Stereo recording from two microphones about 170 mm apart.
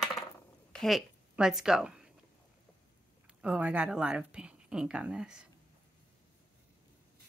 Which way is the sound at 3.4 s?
10° right (ahead or behind).